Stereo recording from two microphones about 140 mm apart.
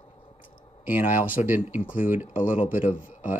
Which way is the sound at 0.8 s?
15° right (ahead or behind).